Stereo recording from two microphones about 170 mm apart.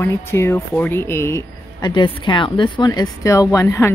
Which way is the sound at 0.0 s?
15° left (ahead or behind).